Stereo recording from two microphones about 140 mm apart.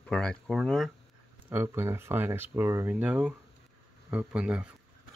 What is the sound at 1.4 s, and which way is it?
Speech, 15° right (ahead or behind).